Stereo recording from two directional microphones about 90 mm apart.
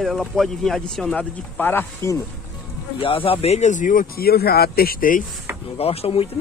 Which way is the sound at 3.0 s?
85° left.